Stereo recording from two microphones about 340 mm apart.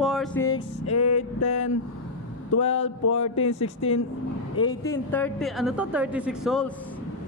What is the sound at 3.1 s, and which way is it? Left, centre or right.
Speech, centre.